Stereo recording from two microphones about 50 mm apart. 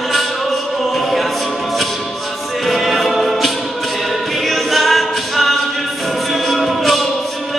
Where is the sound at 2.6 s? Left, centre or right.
Centre.